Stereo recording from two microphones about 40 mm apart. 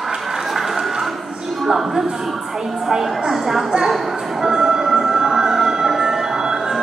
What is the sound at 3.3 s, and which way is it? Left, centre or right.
Music, centre.